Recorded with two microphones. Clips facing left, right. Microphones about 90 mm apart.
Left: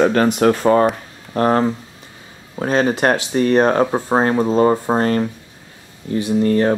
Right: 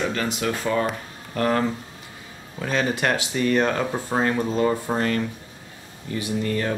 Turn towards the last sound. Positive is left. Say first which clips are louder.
# left 9 dB
turn(degrees=35)  # may be behind; listen again after turning